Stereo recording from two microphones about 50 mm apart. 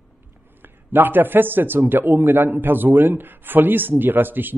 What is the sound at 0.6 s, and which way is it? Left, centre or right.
A man's voice, right.